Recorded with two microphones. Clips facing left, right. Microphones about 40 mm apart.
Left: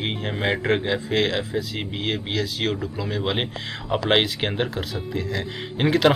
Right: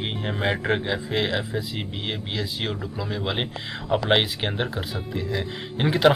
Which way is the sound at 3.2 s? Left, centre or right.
Left.